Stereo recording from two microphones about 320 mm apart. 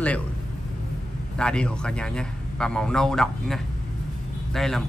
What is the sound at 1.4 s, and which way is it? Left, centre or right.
Speech, centre.